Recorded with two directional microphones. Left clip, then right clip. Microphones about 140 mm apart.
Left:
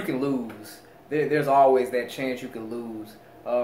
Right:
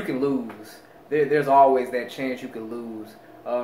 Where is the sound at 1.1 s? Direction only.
15° left (ahead or behind).